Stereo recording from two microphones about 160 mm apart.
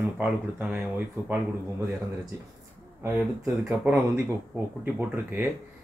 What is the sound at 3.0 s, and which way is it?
Speech, 10° right (ahead or behind).